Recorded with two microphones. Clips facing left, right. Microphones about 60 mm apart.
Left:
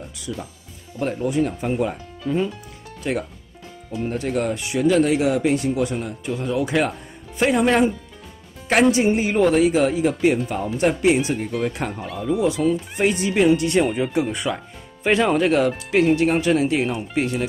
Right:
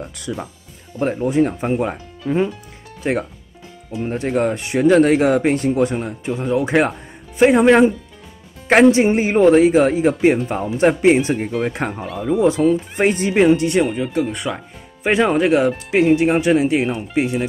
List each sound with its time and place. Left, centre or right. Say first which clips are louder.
0.3 s speech: right 4 dB; right
1.0 s speech: right 4 dB; right
13.7 s speech: right 1 dB; centre
15.0 s speech: right 2 dB; centre